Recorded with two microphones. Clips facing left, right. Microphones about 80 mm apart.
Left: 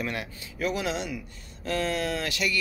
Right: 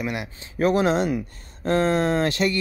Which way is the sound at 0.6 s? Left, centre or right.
Right.